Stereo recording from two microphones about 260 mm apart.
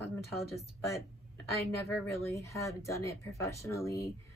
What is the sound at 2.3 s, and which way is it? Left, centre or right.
Speech, centre.